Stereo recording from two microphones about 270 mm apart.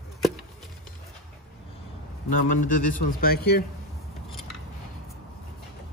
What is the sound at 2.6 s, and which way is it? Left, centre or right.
A man's voice, left.